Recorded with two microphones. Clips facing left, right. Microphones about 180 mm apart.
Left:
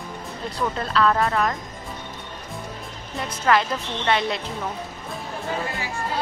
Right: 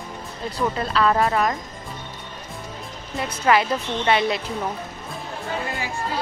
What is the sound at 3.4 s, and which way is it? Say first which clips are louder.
Speech: right 2 dB; 10° right (ahead or behind).